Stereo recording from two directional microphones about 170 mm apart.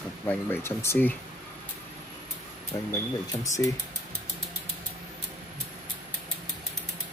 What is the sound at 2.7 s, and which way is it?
Speech, 20° left (ahead or behind).